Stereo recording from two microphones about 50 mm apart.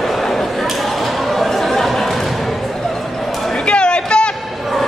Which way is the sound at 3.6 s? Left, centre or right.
Centre.